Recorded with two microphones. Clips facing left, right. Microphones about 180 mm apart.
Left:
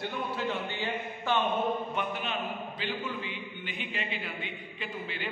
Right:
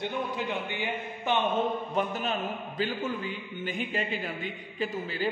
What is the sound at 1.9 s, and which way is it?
A man's voice, 40° right (ahead or behind).